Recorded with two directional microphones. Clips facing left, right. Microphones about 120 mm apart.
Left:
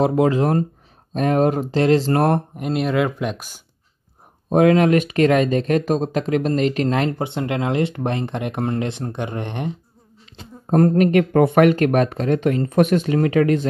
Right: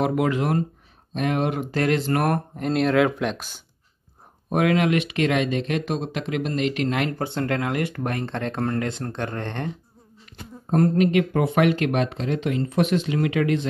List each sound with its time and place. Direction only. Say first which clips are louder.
0.0 s speech: left 5 dB; 30° left (ahead or behind)
1.7 s speech: left 5 dB; 25° left (ahead or behind)
2.5 s speech: even; 5° left (ahead or behind)
4.5 s speech: left 6 dB; 30° left (ahead or behind)
7.2 s speech: left 2 dB; 20° left (ahead or behind)
10.7 s speech: left 4 dB; 45° left (ahead or behind)